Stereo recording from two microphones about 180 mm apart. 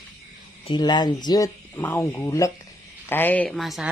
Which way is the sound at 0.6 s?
25° left (ahead or behind).